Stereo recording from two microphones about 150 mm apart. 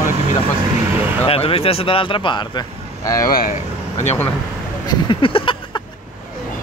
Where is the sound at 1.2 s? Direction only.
40° left (ahead or behind); by 3.3 s 25° left (ahead or behind).